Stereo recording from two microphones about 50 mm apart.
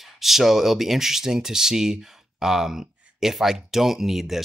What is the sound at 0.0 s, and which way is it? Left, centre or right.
Speech, centre.